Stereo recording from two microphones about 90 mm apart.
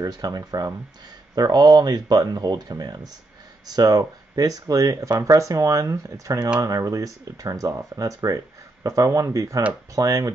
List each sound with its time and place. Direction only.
0.0 s speech: 45° right (ahead or behind)